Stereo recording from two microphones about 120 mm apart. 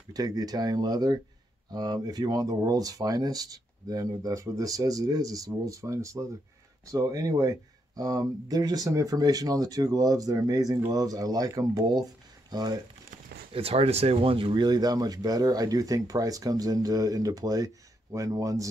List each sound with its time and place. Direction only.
0.1 s speech: 30° right (ahead or behind)
13.5 s speech: 55° right (ahead or behind); by 18.7 s 30° right (ahead or behind)